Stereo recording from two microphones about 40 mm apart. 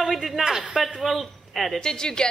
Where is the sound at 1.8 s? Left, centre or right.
Centre.